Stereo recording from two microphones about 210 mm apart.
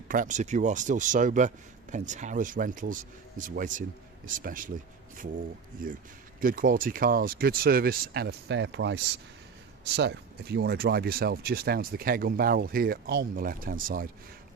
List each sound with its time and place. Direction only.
0.1 s speech: 35° right (ahead or behind)